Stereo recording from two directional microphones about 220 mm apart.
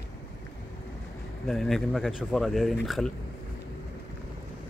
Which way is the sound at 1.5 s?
Centre (ahead or behind).